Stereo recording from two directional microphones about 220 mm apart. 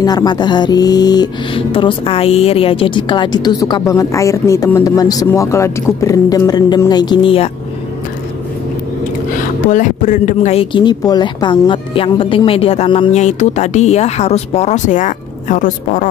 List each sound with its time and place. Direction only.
0.0 s mantra: 15° left (ahead or behind)
9.7 s mantra: 35° left (ahead or behind)